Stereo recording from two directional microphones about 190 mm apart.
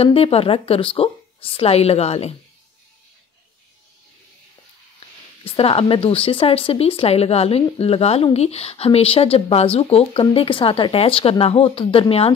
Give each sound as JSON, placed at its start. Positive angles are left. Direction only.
{"t": 0.0, "sound": "speech", "side_deg": 30}
{"t": 5.4, "sound": "speech", "side_deg": 30}